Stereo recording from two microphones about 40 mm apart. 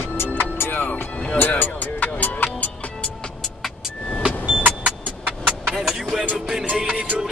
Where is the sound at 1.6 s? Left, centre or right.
Left.